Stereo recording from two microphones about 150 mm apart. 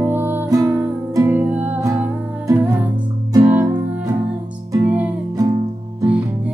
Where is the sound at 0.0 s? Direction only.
15° right (ahead or behind).